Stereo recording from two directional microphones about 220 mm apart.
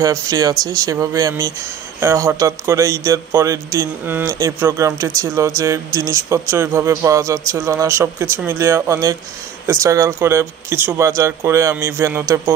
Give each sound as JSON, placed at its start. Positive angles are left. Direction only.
{"t": 0.0, "sound": "a man's voice", "side_deg": -15}